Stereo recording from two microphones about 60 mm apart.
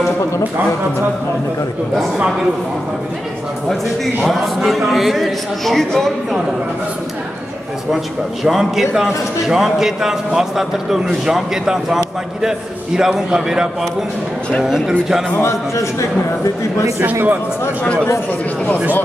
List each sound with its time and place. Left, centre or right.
4.2 s a man's voice: centre
8.5 s a man's voice: centre
15.4 s a man's voice: left
17.0 s a man's voice: right